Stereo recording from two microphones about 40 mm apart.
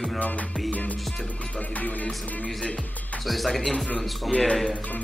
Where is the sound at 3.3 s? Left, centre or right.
Centre.